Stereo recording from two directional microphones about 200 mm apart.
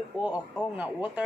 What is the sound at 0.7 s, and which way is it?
Speech, 10° right (ahead or behind).